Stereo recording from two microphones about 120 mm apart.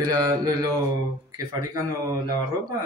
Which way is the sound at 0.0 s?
35° right (ahead or behind).